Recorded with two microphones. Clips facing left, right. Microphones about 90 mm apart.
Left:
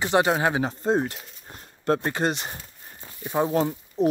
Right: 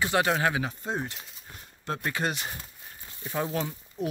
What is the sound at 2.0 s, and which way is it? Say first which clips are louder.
Speech: left 5 dB; 30° left (ahead or behind).